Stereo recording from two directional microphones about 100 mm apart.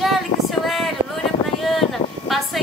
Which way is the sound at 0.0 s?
Centre (ahead or behind).